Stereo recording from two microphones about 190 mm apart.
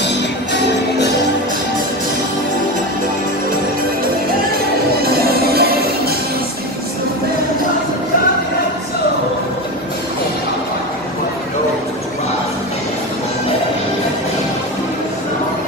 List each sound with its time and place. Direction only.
5.0 s music: 55° right (ahead or behind)